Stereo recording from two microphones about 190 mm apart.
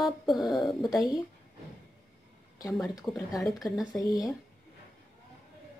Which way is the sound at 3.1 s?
Centre (ahead or behind).